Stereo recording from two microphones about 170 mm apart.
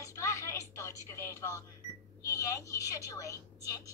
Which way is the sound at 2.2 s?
20° left (ahead or behind).